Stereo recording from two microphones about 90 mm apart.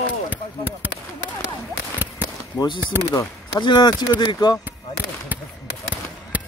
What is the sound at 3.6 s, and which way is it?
Speech, 60° left (ahead or behind).